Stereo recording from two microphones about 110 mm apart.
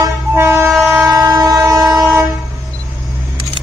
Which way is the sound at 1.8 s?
5° right (ahead or behind).